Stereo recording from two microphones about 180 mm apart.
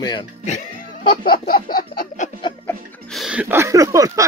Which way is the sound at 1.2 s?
55° left (ahead or behind).